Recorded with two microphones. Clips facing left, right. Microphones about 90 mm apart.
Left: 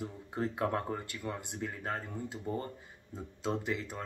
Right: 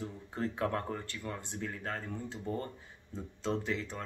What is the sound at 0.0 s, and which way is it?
Speech, 15° left (ahead or behind).